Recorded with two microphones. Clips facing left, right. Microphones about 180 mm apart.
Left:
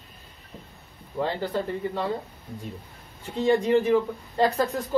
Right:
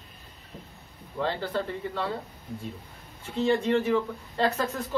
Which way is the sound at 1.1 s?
15° left (ahead or behind).